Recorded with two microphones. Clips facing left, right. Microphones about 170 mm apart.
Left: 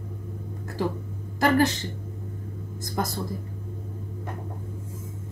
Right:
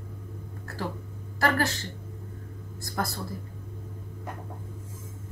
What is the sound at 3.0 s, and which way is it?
Speech, 20° left (ahead or behind).